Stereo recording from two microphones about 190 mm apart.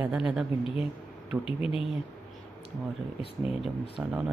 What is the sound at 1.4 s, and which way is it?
Speech, 30° left (ahead or behind).